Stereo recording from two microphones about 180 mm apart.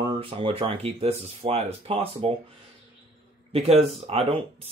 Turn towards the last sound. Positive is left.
turn(degrees=-30)  # may be behind; listen again after turning